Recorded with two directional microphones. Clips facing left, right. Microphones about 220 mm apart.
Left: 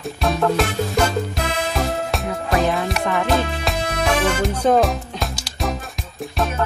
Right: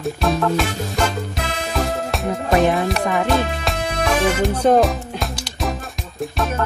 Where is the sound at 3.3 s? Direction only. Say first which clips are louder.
Even; centre (ahead or behind).